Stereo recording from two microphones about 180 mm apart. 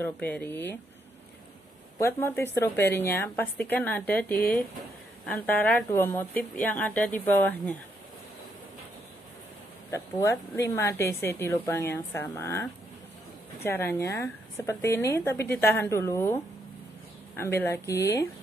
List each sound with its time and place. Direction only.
0.0 s speech: 10° left (ahead or behind)
2.0 s speech: 15° left (ahead or behind)
9.8 s speech: 15° left (ahead or behind)
13.7 s speech: 15° left (ahead or behind)
17.4 s speech: 15° left (ahead or behind)